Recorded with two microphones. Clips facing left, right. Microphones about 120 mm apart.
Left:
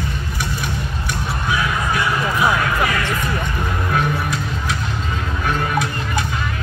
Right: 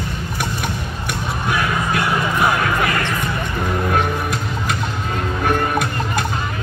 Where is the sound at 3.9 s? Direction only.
55° right (ahead or behind).